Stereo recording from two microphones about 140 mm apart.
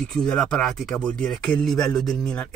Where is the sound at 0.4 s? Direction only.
5° left (ahead or behind).